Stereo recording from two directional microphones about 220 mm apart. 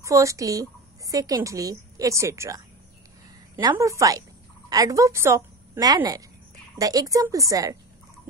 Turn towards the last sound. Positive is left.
turn(degrees=-15)  # may be behind; listen again after turning